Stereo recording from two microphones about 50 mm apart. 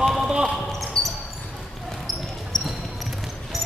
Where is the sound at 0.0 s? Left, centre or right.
Centre.